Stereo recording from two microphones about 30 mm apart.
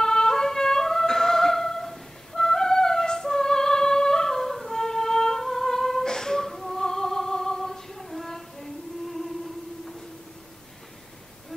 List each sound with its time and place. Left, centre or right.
0.0 s music: centre
6.5 s female singing: centre
6.8 s female singing: centre
8.3 s child singing: centre